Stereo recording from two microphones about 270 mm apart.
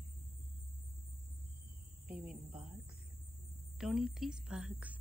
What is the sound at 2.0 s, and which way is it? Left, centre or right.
Speech, centre.